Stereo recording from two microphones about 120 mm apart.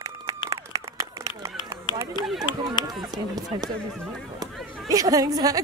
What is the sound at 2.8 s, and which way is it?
Run, 35° left (ahead or behind).